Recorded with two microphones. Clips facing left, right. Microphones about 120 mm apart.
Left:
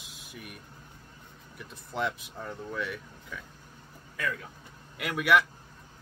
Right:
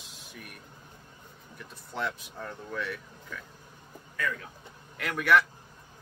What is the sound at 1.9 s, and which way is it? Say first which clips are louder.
Speech: left 2 dB; 10° left (ahead or behind).